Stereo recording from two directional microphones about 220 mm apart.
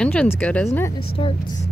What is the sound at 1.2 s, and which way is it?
Speech, 25° left (ahead or behind).